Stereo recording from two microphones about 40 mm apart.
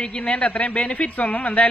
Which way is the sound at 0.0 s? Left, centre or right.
Left.